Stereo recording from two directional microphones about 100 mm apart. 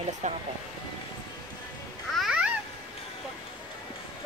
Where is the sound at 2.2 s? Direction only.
10° right (ahead or behind).